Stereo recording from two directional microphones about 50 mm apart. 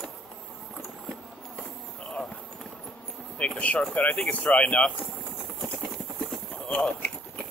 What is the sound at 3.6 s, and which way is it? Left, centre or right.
Speech, left.